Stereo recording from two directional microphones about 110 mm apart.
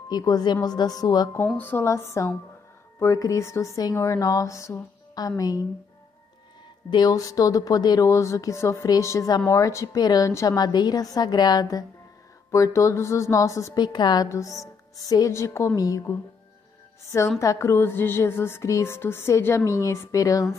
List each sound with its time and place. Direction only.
0.1 s speech: 40° left (ahead or behind)
1.6 s speech: 20° left (ahead or behind)
6.9 s speech: 35° left (ahead or behind)
13.7 s speech: 40° left (ahead or behind)
17.4 s speech: 25° left (ahead or behind)